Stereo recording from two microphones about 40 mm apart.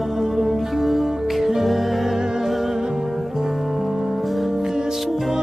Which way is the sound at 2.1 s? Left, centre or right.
Centre.